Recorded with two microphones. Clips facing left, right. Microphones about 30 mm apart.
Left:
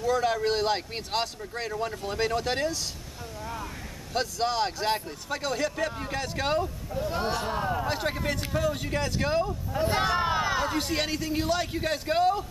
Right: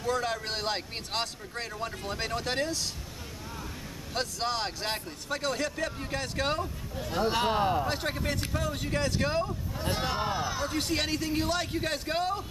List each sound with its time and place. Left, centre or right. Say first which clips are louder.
0.2 s speech: left 6 dB; centre
4.1 s speech: left 4 dB; centre
7.4 s speech: right 3 dB; right
7.8 s speech: left 2 dB; centre
9.9 s speech: left 5 dB; left
10.8 s speech: left 1 dB; centre